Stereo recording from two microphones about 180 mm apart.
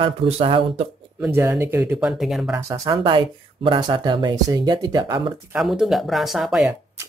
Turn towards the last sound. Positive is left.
turn(degrees=0)  # may be behind; listen again after turning